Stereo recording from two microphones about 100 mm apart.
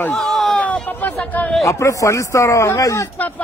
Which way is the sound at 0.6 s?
15° left (ahead or behind).